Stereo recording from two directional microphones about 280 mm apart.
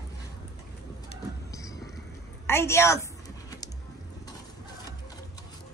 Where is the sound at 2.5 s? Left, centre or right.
Centre.